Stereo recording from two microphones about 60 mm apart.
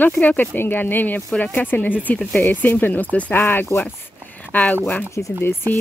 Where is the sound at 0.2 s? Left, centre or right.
Left.